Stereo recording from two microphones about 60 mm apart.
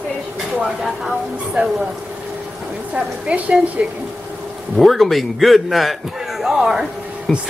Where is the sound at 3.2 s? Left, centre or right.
Right.